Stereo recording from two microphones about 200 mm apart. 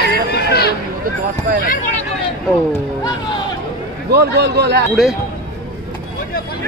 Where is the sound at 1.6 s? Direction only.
45° left (ahead or behind).